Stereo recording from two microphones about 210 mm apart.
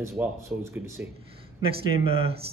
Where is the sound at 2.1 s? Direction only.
25° right (ahead or behind).